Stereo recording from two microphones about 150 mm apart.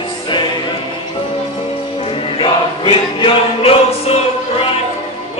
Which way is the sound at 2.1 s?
40° left (ahead or behind).